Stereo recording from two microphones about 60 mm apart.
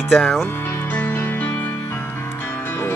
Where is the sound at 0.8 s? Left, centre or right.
Left.